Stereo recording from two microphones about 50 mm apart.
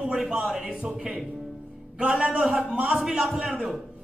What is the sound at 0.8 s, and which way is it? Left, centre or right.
A man's voice, centre.